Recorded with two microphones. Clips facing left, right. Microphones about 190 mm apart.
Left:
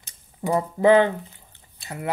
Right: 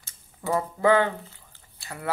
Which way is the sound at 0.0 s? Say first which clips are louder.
Left 4 dB; 20° left (ahead or behind).